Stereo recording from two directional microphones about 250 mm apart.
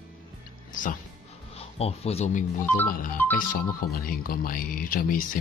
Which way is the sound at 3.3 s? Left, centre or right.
Left.